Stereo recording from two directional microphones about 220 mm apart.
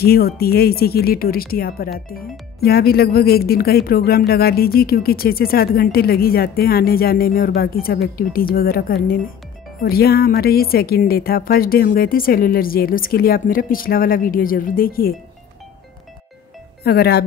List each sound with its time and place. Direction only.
0.0 s speech: 45° left (ahead or behind)
16.8 s speech: 45° left (ahead or behind)